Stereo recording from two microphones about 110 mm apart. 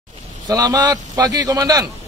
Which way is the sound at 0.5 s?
35° right (ahead or behind).